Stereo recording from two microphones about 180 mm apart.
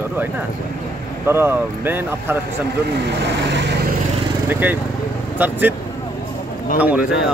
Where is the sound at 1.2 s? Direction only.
15° right (ahead or behind).